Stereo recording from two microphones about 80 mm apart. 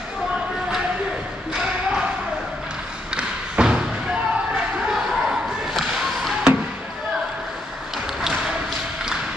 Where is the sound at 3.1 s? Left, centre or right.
Centre.